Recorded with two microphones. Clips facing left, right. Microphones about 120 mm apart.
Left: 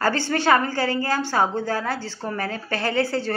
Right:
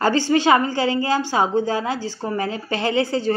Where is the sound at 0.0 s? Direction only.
15° right (ahead or behind).